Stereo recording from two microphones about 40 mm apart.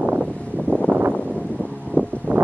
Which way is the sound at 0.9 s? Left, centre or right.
Right.